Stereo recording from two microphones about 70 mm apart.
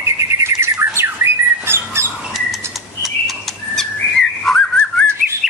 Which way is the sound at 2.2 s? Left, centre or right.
Centre.